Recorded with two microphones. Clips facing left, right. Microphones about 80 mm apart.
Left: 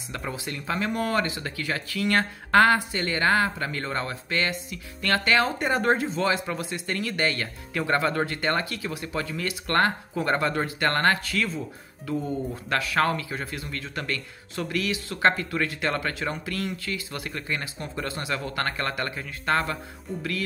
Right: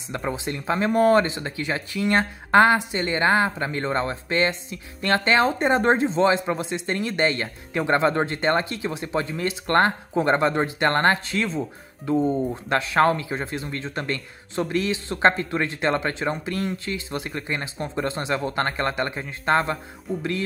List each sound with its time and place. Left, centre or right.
0.1 s speech: right